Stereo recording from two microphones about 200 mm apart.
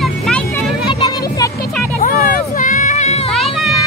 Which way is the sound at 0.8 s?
20° left (ahead or behind).